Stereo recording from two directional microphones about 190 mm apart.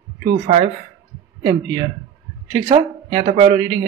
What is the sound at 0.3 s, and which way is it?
A man's voice, 35° right (ahead or behind).